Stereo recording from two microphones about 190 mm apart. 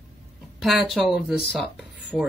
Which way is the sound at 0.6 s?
Centre (ahead or behind).